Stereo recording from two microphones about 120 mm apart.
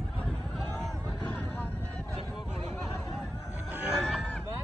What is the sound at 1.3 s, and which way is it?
Vehicle, 15° left (ahead or behind).